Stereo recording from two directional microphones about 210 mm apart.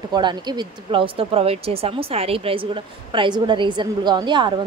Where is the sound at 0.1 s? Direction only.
20° right (ahead or behind).